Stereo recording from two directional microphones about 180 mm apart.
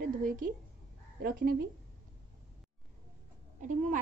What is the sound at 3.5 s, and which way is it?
Speech, 45° right (ahead or behind).